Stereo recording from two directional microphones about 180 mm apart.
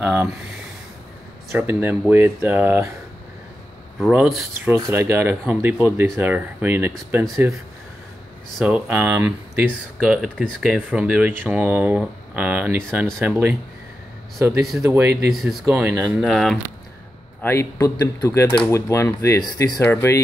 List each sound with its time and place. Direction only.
0.0 s speech: 10° right (ahead or behind)
1.5 s speech: 10° right (ahead or behind)
4.0 s speech: centre (ahead or behind)
4.6 s speech: 15° right (ahead or behind)
8.5 s speech: 5° right (ahead or behind)
14.8 s speech: 10° right (ahead or behind)
17.4 s speech: 15° left (ahead or behind)